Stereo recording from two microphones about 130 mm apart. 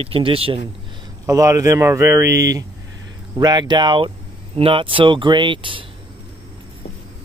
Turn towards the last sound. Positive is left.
turn(degrees=-40)  # may be behind; listen again after turning